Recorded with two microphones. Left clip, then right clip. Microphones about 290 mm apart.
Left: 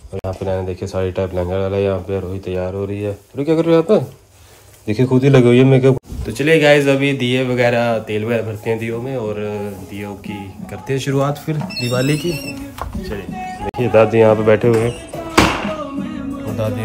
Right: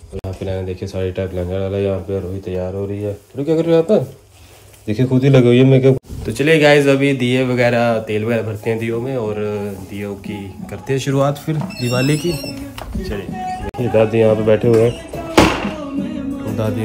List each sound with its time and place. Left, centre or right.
0.9 s speech: centre
5.0 s a man's voice: centre
6.2 s a man's voice: centre
13.0 s music: centre
13.7 s speech: centre
14.8 s music: centre